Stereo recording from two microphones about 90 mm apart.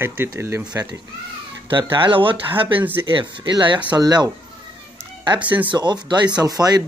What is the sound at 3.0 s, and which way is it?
Speech, 65° right (ahead or behind).